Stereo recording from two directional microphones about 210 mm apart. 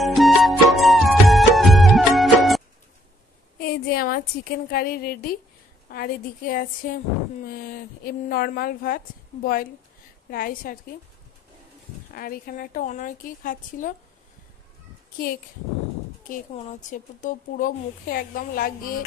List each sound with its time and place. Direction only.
0.0 s music: centre (ahead or behind)
3.5 s a woman's voice: 45° left (ahead or behind)
12.1 s a woman's voice: 45° left (ahead or behind)
16.9 s a woman's voice: 35° left (ahead or behind)